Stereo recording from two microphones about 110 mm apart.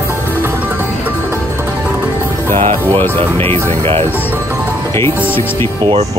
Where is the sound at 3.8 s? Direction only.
60° right (ahead or behind).